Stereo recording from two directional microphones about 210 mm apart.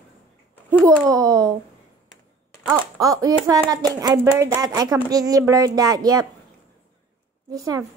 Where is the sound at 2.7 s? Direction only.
15° right (ahead or behind).